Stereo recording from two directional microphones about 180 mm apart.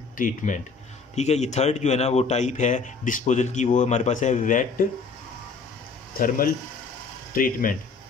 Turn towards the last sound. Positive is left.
turn(degrees=50)  # may be behind; listen again after turning